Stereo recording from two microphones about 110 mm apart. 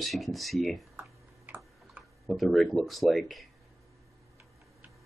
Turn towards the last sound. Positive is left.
turn(degrees=0)  # may be behind; listen again after turning